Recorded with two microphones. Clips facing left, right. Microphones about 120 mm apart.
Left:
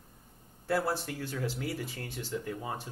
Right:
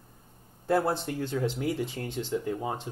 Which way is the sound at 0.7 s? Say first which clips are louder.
Right 5 dB; 20° right (ahead or behind).